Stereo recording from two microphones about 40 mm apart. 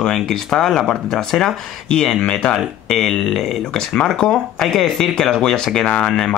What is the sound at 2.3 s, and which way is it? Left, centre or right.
Speech, left.